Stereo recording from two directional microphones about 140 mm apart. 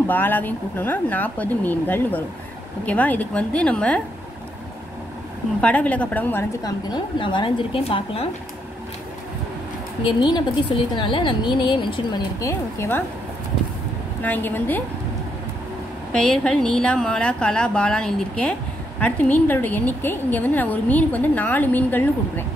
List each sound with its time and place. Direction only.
0.0 s a woman's voice: 15° left (ahead or behind)
5.6 s a woman's voice: 10° left (ahead or behind)
6.6 s speech: 35° left (ahead or behind)
10.0 s speech: 30° left (ahead or behind)
12.4 s speech: 20° left (ahead or behind)
14.2 s a woman's voice: 15° left (ahead or behind)
16.1 s a woman's voice: 5° left (ahead or behind)